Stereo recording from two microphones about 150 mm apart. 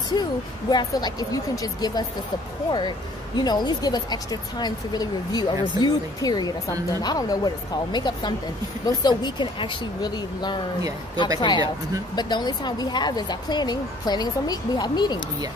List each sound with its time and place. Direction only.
0.1 s speech: 30° left (ahead or behind)
3.3 s speech: 30° left (ahead or behind)